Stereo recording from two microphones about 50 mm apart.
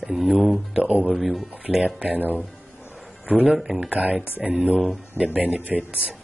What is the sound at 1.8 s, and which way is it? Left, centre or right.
Speech, right.